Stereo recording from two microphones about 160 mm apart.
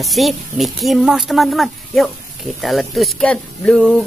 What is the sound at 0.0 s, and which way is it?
Speech, centre (ahead or behind).